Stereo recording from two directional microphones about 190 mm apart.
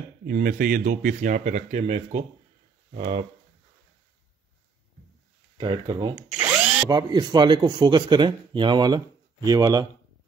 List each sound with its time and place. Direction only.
0.3 s speech: 50° right (ahead or behind); by 3.3 s 30° right (ahead or behind)
5.6 s speech: 25° right (ahead or behind)
6.2 s drill: 10° right (ahead or behind)
6.9 s speech: 20° right (ahead or behind)